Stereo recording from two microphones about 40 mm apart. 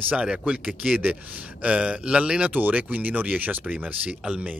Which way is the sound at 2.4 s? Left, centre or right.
Right.